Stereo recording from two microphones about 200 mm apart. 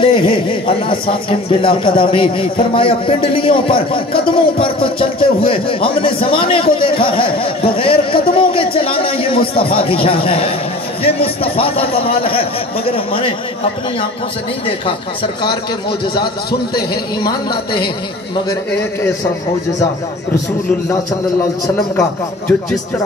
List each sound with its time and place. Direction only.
0.0 s a man's voice: 25° left (ahead or behind)
16.9 s a man's voice: 20° left (ahead or behind)